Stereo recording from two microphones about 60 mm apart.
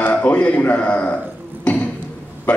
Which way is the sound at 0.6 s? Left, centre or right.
Left.